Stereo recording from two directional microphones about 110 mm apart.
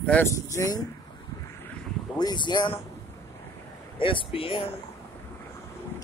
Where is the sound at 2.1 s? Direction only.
40° left (ahead or behind).